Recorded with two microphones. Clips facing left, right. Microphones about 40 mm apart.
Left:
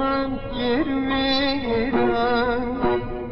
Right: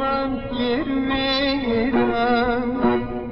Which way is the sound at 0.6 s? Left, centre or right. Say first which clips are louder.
Left 1 dB; centre.